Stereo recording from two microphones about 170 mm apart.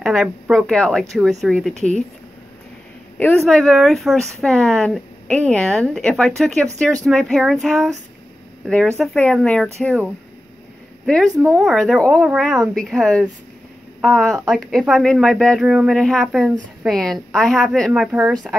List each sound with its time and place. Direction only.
0.0 s speech: centre (ahead or behind)
1.8 s speech: 45° right (ahead or behind)
3.4 s speech: 5° left (ahead or behind)
11.4 s speech: 5° right (ahead or behind)